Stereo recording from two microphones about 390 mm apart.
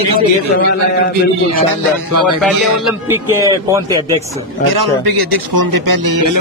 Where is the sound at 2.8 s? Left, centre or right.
Centre.